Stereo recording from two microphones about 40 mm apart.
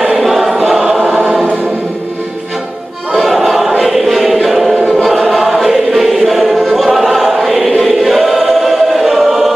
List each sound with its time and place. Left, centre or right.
0.2 s choir: centre
1.0 s choir: right
3.3 s music: centre
4.9 s choir: centre